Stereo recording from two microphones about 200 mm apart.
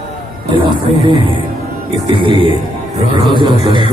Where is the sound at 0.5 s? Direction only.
25° right (ahead or behind).